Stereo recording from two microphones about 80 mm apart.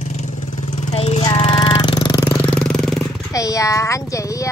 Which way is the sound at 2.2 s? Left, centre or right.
Centre.